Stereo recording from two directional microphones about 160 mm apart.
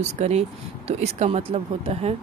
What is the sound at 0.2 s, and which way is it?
Speech, 40° right (ahead or behind).